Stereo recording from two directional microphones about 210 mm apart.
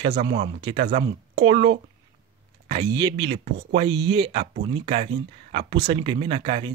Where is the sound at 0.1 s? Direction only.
25° right (ahead or behind).